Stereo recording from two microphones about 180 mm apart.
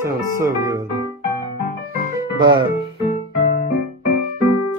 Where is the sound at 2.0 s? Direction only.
20° right (ahead or behind).